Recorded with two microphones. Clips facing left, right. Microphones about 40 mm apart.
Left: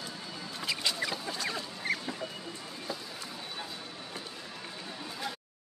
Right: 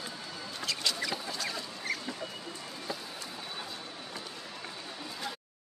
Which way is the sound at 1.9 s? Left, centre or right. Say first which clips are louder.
Left 3 dB; left.